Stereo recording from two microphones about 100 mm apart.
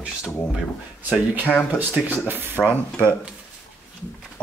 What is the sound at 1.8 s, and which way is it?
Speech, 20° right (ahead or behind).